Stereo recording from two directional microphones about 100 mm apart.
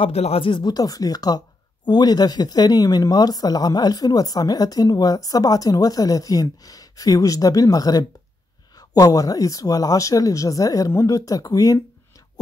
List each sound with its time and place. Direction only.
0.0 s speech: 85° left; by 11.8 s 40° left (ahead or behind)